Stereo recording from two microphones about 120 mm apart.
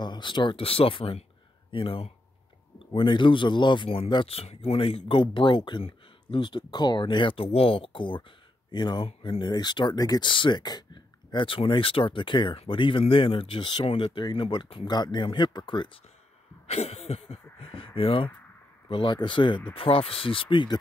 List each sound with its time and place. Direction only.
0.0 s speech: 40° left (ahead or behind)
16.6 s speech: 60° left (ahead or behind); by 20.7 s 45° left (ahead or behind)